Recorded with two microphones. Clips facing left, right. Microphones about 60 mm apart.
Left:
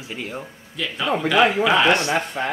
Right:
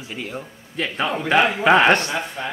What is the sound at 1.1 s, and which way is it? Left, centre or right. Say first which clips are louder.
Speech: left 2 dB; right.